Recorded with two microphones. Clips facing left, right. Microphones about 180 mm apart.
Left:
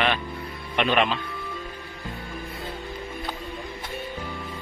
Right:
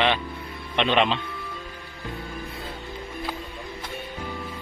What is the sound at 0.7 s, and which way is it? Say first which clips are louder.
Speech: right 1 dB; centre (ahead or behind).